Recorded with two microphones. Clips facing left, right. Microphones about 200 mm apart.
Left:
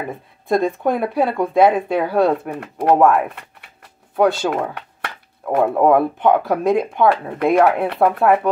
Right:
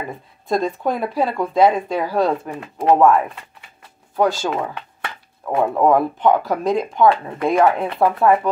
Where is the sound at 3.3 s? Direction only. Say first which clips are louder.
Left 2 dB; 60° left (ahead or behind).